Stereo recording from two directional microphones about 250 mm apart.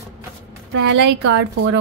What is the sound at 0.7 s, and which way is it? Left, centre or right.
A woman's voice, right.